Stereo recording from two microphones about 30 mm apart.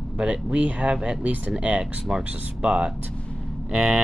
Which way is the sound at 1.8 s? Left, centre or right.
Right.